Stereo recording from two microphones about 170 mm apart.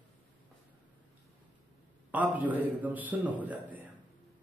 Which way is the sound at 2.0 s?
10° right (ahead or behind).